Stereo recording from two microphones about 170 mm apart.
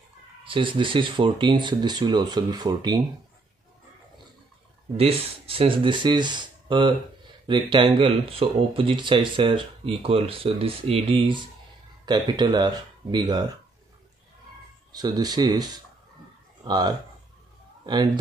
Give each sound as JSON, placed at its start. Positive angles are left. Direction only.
{"t": 0.5, "sound": "speech", "side_deg": -30}
{"t": 4.9, "sound": "speech", "side_deg": -35}
{"t": 14.9, "sound": "speech", "side_deg": -25}